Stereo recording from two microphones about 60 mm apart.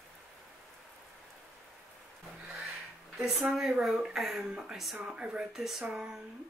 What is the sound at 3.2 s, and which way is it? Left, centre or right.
Speech, centre.